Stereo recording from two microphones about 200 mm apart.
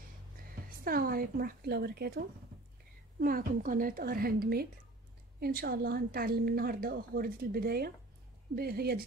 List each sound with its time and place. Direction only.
0.7 s a woman's voice: 45° right (ahead or behind)